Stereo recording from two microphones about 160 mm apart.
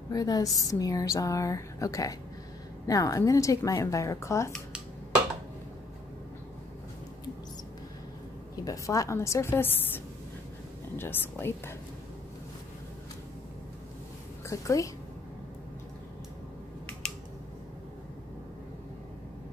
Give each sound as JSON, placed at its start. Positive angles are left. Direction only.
{"t": 0.1, "sound": "a woman's voice", "side_deg": 20}
{"t": 8.6, "sound": "a woman's voice", "side_deg": 20}
{"t": 14.5, "sound": "a woman's voice", "side_deg": 20}